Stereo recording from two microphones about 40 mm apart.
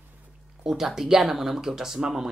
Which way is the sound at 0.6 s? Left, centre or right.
Centre.